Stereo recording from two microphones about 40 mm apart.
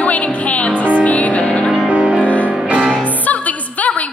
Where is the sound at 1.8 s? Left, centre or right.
Right.